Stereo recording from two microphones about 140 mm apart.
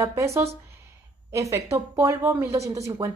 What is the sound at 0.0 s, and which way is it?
Speech, 20° right (ahead or behind).